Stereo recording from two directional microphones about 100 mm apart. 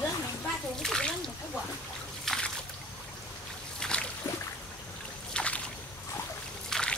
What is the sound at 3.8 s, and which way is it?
Boat, 10° left (ahead or behind).